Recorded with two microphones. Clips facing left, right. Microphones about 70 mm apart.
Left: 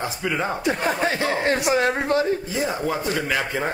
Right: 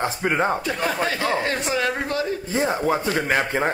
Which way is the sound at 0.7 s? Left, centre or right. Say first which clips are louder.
Left 2 dB; left.